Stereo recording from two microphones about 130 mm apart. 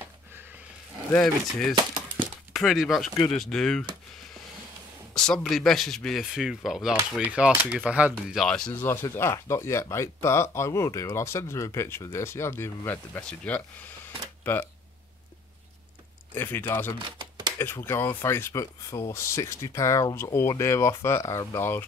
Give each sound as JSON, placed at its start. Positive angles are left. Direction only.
{"t": 1.1, "sound": "speech", "side_deg": 5}
{"t": 5.1, "sound": "speech", "side_deg": 5}
{"t": 8.1, "sound": "speech", "side_deg": 0}
{"t": 8.8, "sound": "speech", "side_deg": 20}
{"t": 16.3, "sound": "speech", "side_deg": 15}
{"t": 17.2, "sound": "typewriter", "side_deg": -35}
{"t": 17.6, "sound": "speech", "side_deg": 20}